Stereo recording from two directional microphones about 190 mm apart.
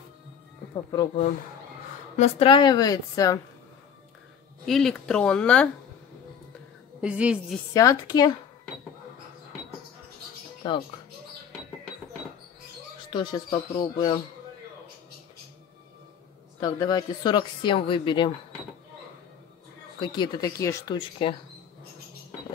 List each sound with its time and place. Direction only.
2.1 s speech: 35° left (ahead or behind); by 3.3 s 20° left (ahead or behind)
4.6 s speech: centre (ahead or behind)
7.0 s a woman's voice: 5° right (ahead or behind)
7.7 s speech: 20° left (ahead or behind)
10.6 s speech: 25° left (ahead or behind)
13.1 s speech: 25° left (ahead or behind)
16.5 s speech: 20° left (ahead or behind)
20.0 s speech: 25° left (ahead or behind)